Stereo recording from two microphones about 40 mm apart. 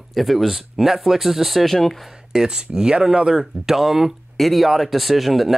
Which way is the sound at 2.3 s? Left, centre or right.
Centre.